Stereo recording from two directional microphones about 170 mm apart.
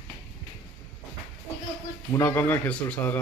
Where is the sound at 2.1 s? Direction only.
10° left (ahead or behind).